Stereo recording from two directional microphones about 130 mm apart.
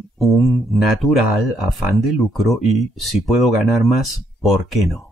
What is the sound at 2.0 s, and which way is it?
Speech, centre (ahead or behind).